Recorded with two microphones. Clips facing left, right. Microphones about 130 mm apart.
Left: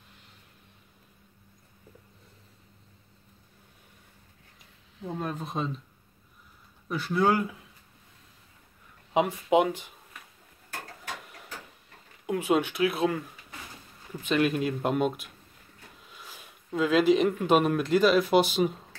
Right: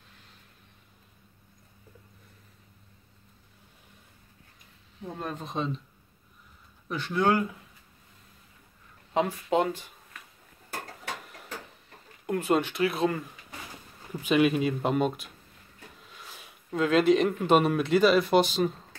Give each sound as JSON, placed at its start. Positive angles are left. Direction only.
{"t": 5.0, "sound": "speech", "side_deg": 5}
{"t": 6.9, "sound": "speech", "side_deg": 5}
{"t": 9.1, "sound": "speech", "side_deg": 15}
{"t": 12.3, "sound": "speech", "side_deg": 5}